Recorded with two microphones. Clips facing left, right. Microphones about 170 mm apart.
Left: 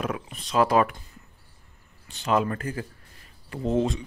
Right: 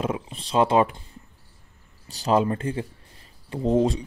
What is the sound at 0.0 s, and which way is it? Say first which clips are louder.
Speech: right 3 dB; 25° right (ahead or behind).